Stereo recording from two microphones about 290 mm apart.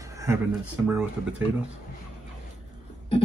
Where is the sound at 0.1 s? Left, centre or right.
Centre.